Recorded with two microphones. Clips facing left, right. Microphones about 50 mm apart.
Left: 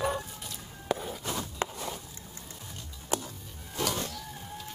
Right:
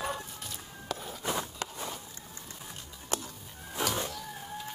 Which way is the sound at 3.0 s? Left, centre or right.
Centre.